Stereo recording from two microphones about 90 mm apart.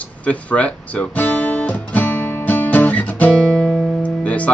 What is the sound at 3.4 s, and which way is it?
Music, 10° left (ahead or behind).